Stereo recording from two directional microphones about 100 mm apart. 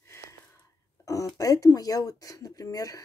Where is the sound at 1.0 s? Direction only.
35° left (ahead or behind).